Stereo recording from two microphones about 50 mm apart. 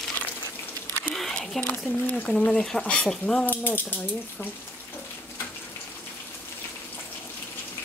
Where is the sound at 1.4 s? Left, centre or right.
Centre.